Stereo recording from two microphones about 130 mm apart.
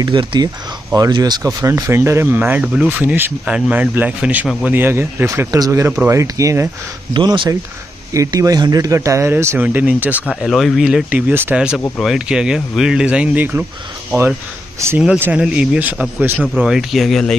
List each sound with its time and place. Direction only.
0.0 s speech: 35° right (ahead or behind)
7.2 s speech: 35° right (ahead or behind); by 10.1 s 15° right (ahead or behind)
10.4 s speech: centre (ahead or behind)
15.0 s speech: 15° right (ahead or behind); by 17.4 s 5° left (ahead or behind)